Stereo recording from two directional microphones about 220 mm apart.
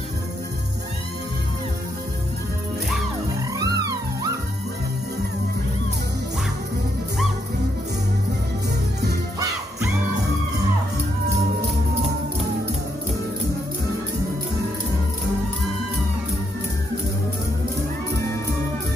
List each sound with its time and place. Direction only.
3.5 s music: 15° right (ahead or behind)